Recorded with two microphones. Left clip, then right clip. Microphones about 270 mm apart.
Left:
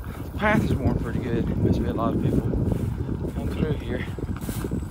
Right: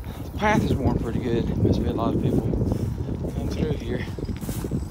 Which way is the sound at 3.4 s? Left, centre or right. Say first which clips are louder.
Right 1 dB; centre.